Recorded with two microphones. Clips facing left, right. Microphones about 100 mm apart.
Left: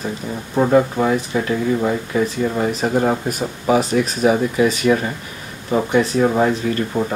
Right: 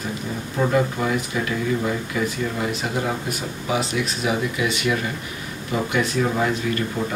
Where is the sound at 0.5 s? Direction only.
35° left (ahead or behind).